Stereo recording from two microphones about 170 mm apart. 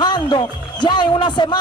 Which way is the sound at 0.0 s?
25° left (ahead or behind).